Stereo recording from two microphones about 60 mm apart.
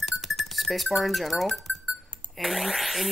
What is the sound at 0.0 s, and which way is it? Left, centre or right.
Music, centre.